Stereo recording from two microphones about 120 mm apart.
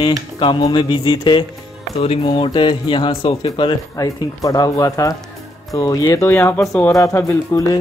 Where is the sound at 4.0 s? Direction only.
30° left (ahead or behind).